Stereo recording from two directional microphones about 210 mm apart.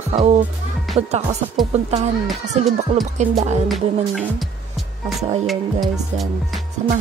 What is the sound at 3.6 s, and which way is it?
Music, centre (ahead or behind).